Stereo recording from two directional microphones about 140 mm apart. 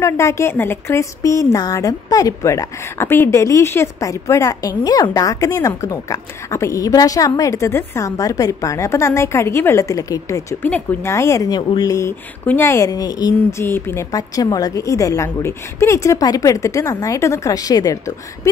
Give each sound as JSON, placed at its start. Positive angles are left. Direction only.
{"t": 0.0, "sound": "a woman's voice", "side_deg": 20}
{"t": 13.5, "sound": "a woman's voice", "side_deg": 20}